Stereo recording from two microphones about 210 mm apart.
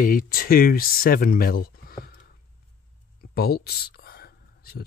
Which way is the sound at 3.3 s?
50° left (ahead or behind).